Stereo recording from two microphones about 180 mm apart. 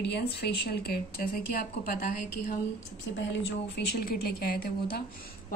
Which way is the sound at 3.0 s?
85° left.